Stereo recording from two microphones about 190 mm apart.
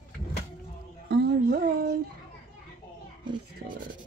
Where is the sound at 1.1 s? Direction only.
60° right (ahead or behind).